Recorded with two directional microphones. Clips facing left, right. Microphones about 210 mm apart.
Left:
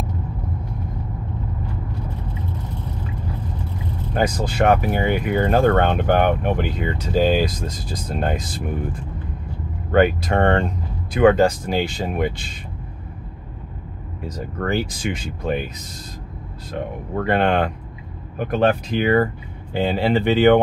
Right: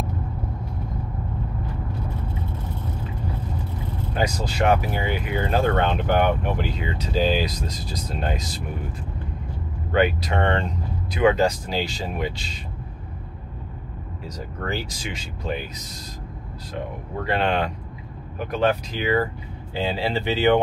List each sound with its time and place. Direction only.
4.1 s speech: 50° left (ahead or behind)
14.2 s speech: 55° left (ahead or behind)
17.3 s speech: 55° left (ahead or behind)